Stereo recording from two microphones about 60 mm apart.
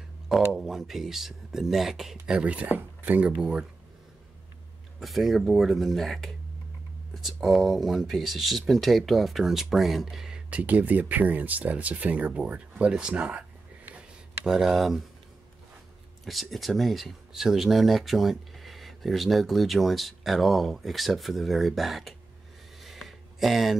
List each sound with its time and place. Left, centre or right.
0.6 s speech: centre
2.3 s speech: right
5.0 s speech: centre
10.5 s speech: right; by 15.0 s centre
16.3 s speech: centre
22.8 s a sound: centre